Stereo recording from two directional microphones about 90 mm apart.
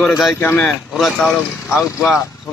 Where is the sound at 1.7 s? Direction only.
25° left (ahead or behind).